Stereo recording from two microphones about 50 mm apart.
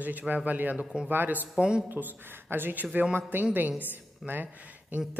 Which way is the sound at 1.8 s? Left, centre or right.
Right.